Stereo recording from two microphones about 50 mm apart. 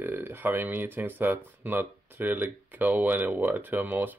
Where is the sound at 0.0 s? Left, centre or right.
Right.